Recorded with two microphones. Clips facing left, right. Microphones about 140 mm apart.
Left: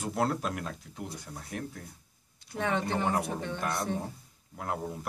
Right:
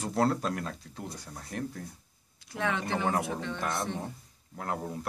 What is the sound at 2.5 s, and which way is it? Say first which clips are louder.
Speech: left 1 dB; 35° left (ahead or behind).